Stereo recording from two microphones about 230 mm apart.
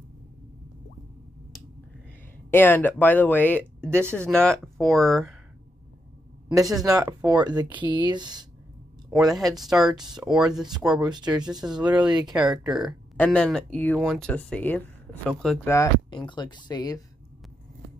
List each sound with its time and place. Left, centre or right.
2.5 s speech: centre
3.9 s speech: centre
4.3 s speech: centre
6.5 s speech: centre
9.3 s speech: centre
11.1 s speech: centre
11.6 s speech: centre
12.1 s speech: centre
12.6 s speech: centre